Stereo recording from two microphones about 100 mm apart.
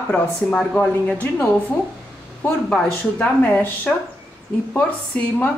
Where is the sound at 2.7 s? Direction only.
15° left (ahead or behind).